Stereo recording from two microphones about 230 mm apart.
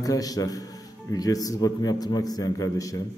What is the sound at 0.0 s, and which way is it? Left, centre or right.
A man's voice, centre.